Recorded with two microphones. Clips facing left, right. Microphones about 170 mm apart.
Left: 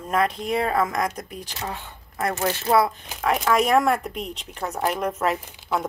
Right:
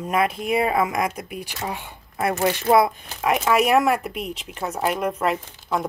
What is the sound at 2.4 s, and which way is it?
Speech, 15° right (ahead or behind).